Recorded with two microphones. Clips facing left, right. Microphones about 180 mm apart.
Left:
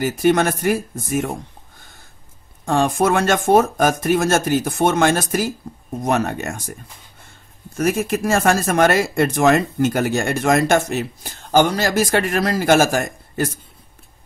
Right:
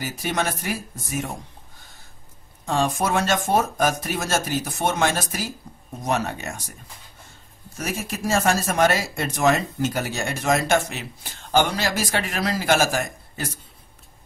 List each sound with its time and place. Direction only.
0.0 s speech: 50° left (ahead or behind)
2.6 s speech: 55° left (ahead or behind)
7.7 s speech: 55° left (ahead or behind)